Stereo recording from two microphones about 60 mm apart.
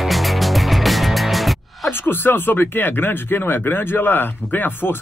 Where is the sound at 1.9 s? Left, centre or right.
Left.